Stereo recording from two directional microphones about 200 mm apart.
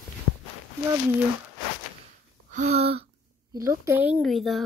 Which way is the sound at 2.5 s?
35° right (ahead or behind).